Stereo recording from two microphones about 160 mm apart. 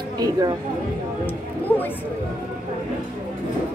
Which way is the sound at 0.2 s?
25° right (ahead or behind).